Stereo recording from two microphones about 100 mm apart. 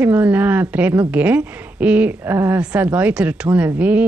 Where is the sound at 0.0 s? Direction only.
15° right (ahead or behind).